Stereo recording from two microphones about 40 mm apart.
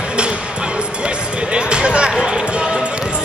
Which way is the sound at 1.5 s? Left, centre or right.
Right.